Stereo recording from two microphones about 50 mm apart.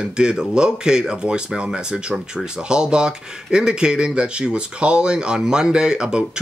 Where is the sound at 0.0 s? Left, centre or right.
Centre.